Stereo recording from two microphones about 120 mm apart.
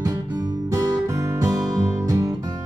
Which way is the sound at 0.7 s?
30° right (ahead or behind).